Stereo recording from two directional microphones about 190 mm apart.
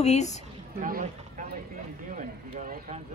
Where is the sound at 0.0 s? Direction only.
35° left (ahead or behind).